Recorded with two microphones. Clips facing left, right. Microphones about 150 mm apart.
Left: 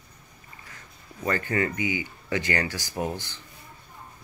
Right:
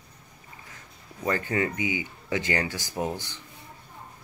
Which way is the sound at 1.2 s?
15° right (ahead or behind).